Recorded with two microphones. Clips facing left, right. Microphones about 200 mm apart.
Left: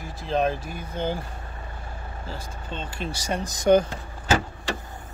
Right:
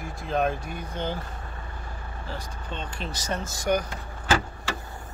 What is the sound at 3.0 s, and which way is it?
Speech, 10° left (ahead or behind).